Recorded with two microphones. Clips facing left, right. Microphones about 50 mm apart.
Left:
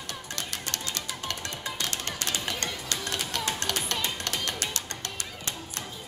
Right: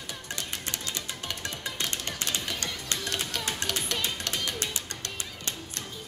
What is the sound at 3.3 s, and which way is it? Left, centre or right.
Run, centre.